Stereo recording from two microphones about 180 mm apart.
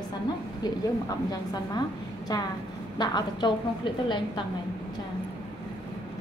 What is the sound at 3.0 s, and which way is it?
Speech, 25° left (ahead or behind).